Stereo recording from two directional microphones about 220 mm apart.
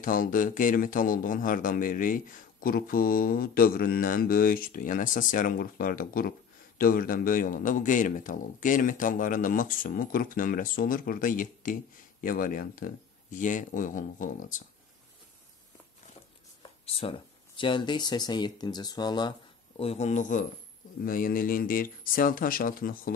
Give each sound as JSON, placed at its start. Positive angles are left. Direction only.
{"t": 0.0, "sound": "a man's voice", "side_deg": 40}
{"t": 16.8, "sound": "a man's voice", "side_deg": 25}